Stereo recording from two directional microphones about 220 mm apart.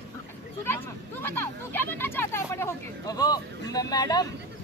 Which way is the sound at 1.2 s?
10° left (ahead or behind).